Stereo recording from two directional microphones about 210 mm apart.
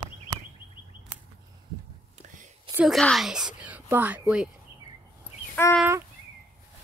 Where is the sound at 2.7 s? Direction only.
Centre (ahead or behind).